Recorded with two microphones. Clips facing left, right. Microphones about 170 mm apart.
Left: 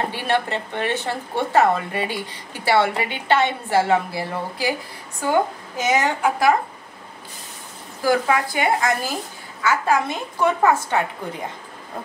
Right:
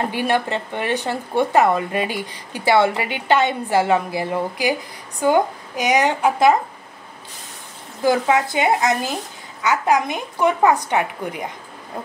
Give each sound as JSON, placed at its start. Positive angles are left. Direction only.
{"t": 0.1, "sound": "speech", "side_deg": -15}
{"t": 8.0, "sound": "a woman's voice", "side_deg": -20}